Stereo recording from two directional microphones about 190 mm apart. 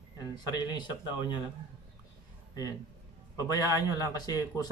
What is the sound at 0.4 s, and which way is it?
A man's voice, 20° left (ahead or behind).